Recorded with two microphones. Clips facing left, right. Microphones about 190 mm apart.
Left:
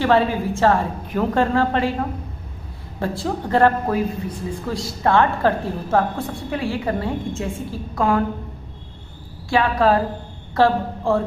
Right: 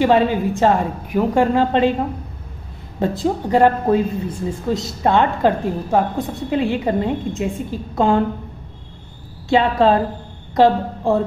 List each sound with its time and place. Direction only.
0.0 s a woman's voice: 15° right (ahead or behind)
3.0 s speech: 20° right (ahead or behind)
9.5 s a woman's voice: 25° right (ahead or behind)